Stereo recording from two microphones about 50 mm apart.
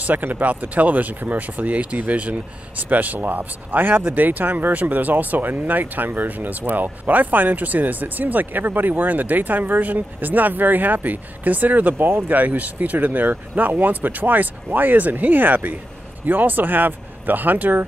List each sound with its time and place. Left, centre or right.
0.0 s speech: right
12.4 s speech: right